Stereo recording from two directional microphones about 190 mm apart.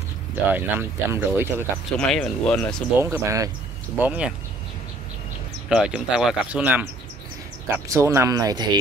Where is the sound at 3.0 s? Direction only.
15° right (ahead or behind).